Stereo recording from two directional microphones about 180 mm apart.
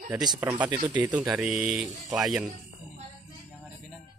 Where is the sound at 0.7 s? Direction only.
25° right (ahead or behind).